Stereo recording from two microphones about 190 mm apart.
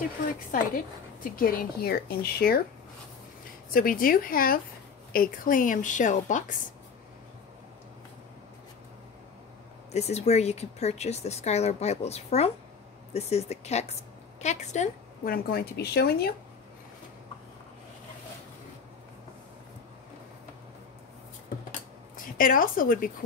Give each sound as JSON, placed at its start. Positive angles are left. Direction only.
{"t": 1.3, "sound": "a woman's voice", "side_deg": 50}
{"t": 3.7, "sound": "a woman's voice", "side_deg": 50}
{"t": 9.9, "sound": "a woman's voice", "side_deg": 35}
{"t": 22.1, "sound": "a woman's voice", "side_deg": 45}